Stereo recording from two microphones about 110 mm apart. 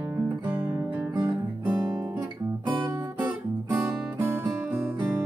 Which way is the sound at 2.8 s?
15° right (ahead or behind).